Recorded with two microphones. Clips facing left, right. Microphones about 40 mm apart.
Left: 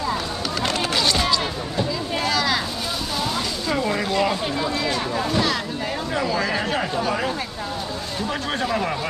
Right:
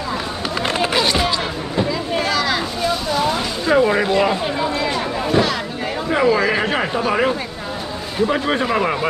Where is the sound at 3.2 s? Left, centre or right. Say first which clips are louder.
Right 5 dB; right.